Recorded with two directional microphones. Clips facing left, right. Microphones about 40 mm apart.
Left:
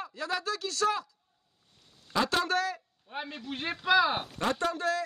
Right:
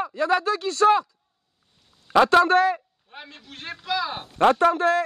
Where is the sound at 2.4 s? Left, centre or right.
Right.